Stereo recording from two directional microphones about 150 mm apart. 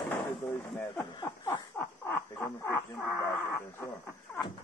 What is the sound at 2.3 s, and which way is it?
Speech, 15° left (ahead or behind).